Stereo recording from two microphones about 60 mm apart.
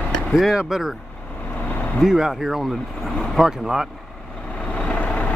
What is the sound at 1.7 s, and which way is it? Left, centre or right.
Vehicle, left.